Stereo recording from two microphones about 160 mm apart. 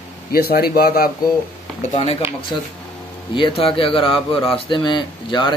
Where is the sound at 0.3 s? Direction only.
75° left (ahead or behind).